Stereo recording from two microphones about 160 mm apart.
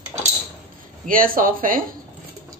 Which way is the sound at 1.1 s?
60° right (ahead or behind).